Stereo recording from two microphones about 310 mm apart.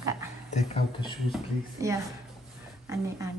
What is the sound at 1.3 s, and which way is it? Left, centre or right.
Speech, centre.